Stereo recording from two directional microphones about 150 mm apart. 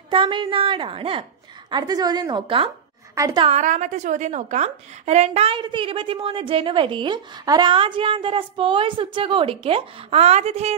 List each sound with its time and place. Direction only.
0.1 s a woman's voice: 35° right (ahead or behind)
3.2 s a woman's voice: 20° right (ahead or behind)
3.4 s a woman's voice: 50° right (ahead or behind)